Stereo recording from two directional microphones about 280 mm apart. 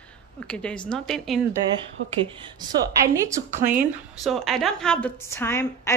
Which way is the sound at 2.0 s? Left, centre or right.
Centre.